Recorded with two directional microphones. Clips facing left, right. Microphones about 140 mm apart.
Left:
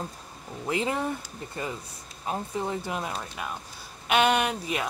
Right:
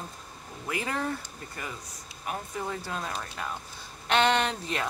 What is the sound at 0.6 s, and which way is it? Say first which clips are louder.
Speech: left 4 dB; 20° left (ahead or behind).